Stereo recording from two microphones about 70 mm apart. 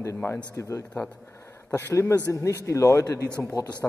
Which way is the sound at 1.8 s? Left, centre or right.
Left.